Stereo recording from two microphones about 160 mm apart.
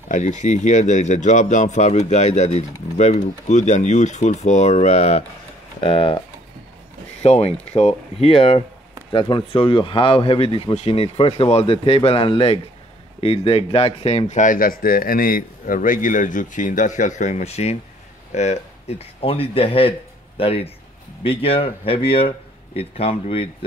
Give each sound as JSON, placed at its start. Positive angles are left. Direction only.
{"t": 0.1, "sound": "speech", "side_deg": 50}
{"t": 7.2, "sound": "speech", "side_deg": 40}